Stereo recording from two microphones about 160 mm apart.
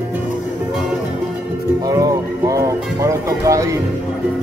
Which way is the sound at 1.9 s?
20° right (ahead or behind).